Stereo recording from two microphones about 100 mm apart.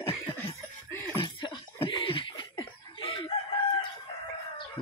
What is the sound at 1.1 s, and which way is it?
Chuckle, 55° left (ahead or behind).